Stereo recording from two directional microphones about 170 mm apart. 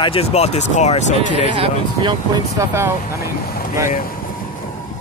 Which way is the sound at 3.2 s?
65° left (ahead or behind).